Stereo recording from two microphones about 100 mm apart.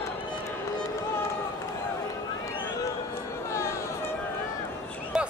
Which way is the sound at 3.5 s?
30° left (ahead or behind).